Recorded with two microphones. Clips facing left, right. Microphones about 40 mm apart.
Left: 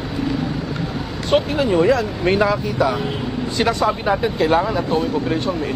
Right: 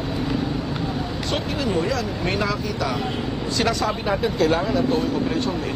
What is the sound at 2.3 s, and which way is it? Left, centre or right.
Speech, left.